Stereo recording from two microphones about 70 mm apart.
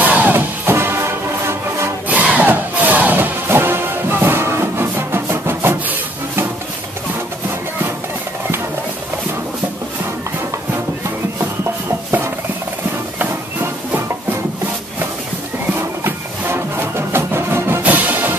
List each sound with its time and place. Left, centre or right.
0.0 s music: right
2.0 s music: right
13.2 s a sound: right
16.0 s music: right
17.8 s music: right